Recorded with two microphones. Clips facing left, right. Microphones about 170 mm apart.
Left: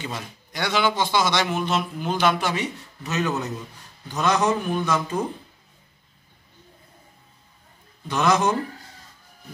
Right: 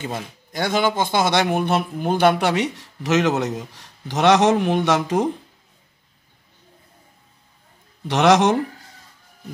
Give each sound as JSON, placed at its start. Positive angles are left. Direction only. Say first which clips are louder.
{"t": 0.0, "sound": "a man's voice", "louder": "right 4 dB", "side_deg": -50}
{"t": 8.1, "sound": "a man's voice", "louder": "right 5 dB", "side_deg": -85}